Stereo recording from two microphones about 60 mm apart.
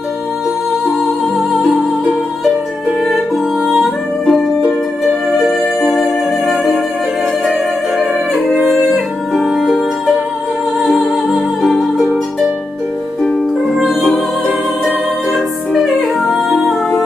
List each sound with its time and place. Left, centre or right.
3.6 s music: centre
8.0 s music: right
8.6 s music: centre
10.8 s music: centre
13.7 s music: centre